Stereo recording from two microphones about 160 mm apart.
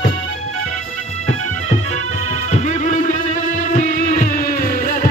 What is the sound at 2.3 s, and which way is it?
Music, 45° left (ahead or behind).